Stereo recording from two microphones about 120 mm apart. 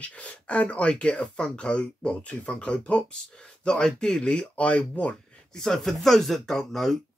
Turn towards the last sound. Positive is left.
turn(degrees=5)  # may be behind; listen again after turning